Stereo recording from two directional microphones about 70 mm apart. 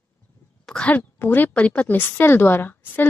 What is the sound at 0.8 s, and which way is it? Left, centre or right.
Speech, left.